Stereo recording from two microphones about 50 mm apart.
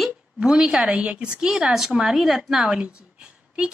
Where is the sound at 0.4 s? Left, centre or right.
Centre.